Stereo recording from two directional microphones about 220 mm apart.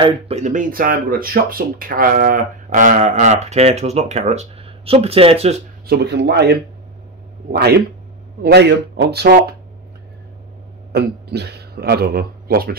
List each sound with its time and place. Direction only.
0.0 s speech: 30° right (ahead or behind)
5.9 s speech: 50° right (ahead or behind)
10.9 s speech: 50° right (ahead or behind)